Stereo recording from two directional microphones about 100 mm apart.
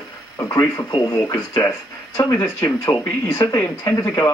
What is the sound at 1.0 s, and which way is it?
Speech, 30° left (ahead or behind).